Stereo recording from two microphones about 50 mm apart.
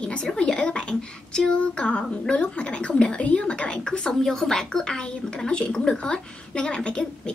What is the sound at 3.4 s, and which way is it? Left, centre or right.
A woman's voice, left.